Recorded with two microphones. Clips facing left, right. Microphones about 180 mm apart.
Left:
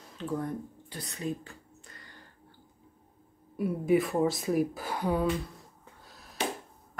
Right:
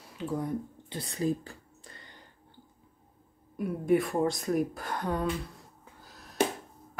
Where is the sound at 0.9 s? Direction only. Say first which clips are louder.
Right 5 dB; 30° right (ahead or behind).